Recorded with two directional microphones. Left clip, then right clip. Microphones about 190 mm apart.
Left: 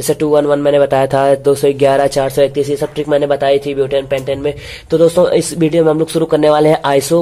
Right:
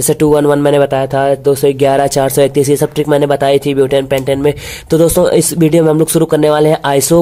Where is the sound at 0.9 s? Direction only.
10° right (ahead or behind).